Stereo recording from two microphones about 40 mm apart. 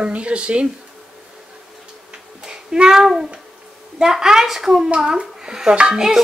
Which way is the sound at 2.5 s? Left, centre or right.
Centre.